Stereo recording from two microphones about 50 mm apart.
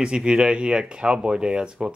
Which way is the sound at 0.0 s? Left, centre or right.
Centre.